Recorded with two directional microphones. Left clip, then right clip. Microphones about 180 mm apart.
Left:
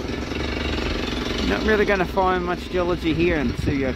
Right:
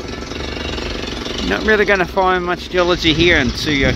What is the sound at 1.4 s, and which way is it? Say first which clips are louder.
Speech: right 6 dB; 10° right (ahead or behind).